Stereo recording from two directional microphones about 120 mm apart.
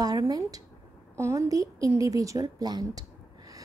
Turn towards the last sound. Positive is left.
turn(degrees=-35)  # may be behind; listen again after turning